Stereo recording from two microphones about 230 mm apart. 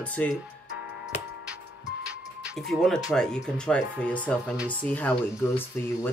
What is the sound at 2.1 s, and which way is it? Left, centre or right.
Music, centre.